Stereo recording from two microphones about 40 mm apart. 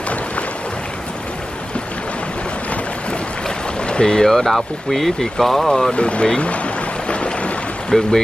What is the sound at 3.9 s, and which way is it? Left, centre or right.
Speech, centre.